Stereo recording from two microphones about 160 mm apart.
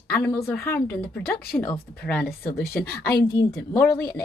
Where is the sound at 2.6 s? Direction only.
75° left (ahead or behind).